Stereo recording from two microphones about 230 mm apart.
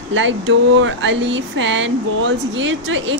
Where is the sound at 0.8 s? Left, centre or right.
Right.